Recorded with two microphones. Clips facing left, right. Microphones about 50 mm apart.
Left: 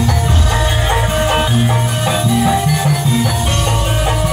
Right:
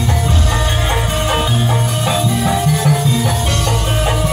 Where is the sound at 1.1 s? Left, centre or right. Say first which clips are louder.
Left 2 dB; left.